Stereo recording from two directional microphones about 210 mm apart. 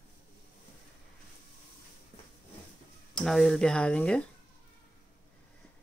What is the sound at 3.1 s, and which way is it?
Speech, centre (ahead or behind).